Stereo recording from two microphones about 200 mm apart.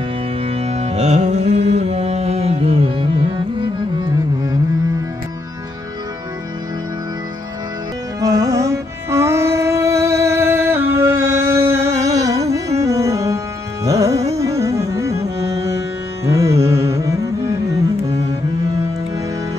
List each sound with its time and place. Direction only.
0.5 s music: 30° right (ahead or behind)
8.2 s music: 15° right (ahead or behind)